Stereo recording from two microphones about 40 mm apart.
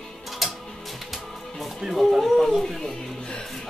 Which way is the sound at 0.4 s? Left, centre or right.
Centre.